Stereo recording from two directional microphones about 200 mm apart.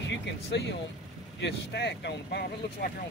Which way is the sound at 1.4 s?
60° left (ahead or behind).